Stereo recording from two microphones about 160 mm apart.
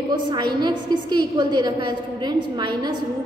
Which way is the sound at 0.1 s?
25° right (ahead or behind).